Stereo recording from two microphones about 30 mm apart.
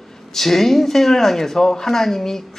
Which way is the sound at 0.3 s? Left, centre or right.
Centre.